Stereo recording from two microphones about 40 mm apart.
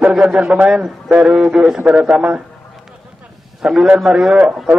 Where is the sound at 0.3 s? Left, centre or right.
Centre.